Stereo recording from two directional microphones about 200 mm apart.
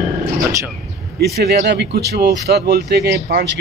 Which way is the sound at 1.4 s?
55° right (ahead or behind).